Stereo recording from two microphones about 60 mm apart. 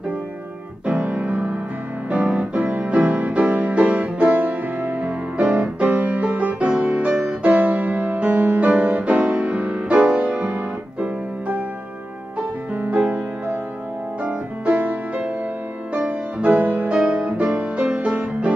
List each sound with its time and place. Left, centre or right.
0.8 s keyboard: right
2.0 s music: right
12.8 s music: right